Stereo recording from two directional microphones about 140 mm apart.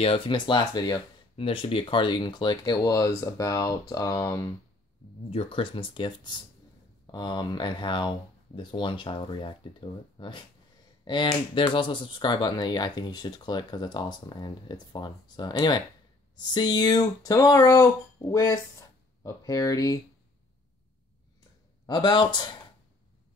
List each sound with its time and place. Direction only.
0.0 s speech: 40° left (ahead or behind); by 4.5 s 25° left (ahead or behind)
5.3 s speech: 40° left (ahead or behind)
11.5 s speech: 35° left (ahead or behind)
21.8 s speech: 30° left (ahead or behind)